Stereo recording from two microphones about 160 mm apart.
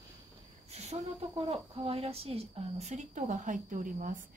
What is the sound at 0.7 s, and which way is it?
A woman's voice, 40° right (ahead or behind).